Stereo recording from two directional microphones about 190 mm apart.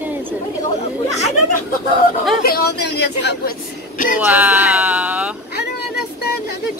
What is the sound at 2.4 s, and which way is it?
Speech, 55° left (ahead or behind).